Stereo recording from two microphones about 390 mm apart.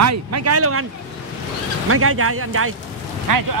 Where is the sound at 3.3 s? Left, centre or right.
Right.